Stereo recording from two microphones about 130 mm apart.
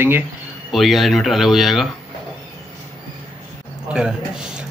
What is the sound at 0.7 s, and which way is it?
A man's voice, centre (ahead or behind).